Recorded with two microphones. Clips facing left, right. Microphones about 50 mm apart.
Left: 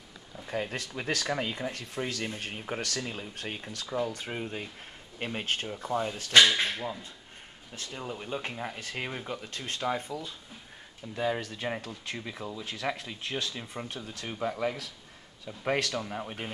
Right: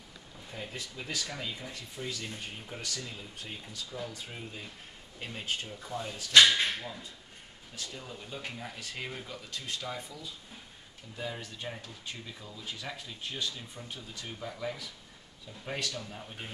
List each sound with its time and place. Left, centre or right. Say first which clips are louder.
0.5 s speech: left 8 dB; left
1.3 s speech: left 8 dB; left
3.0 s speech: left 6 dB; left
3.3 s speech: left 5 dB; left
3.8 s speech: left 9 dB; left
4.1 s speech: left 7 dB; left
7.7 s speech: left 5 dB; left
11.1 s speech: left 8 dB; left